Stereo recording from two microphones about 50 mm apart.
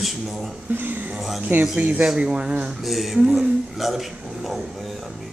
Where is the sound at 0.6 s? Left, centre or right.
Right.